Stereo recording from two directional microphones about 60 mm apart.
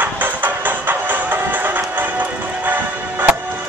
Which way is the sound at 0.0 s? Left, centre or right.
Right.